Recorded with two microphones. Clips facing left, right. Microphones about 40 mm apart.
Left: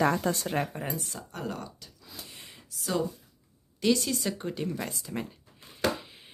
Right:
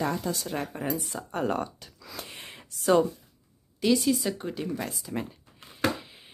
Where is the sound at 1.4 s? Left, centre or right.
Right.